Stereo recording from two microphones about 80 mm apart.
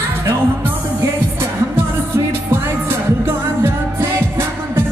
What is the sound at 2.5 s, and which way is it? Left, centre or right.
Music, right.